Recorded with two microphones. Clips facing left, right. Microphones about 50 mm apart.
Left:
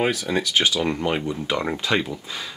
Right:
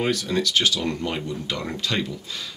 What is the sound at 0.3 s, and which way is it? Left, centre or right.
Speech, centre.